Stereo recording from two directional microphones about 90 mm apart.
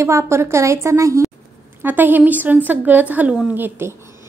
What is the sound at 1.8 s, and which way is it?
Speech, 20° right (ahead or behind).